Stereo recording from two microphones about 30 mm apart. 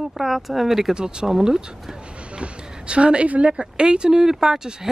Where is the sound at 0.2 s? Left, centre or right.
Centre.